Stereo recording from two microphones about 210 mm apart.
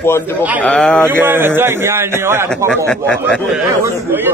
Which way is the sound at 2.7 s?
5° left (ahead or behind).